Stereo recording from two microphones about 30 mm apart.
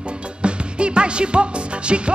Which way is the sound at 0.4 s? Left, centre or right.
Right.